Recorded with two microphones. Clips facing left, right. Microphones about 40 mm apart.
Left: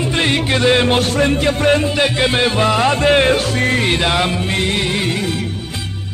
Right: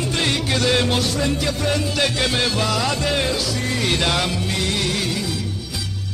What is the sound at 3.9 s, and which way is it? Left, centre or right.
Music, left.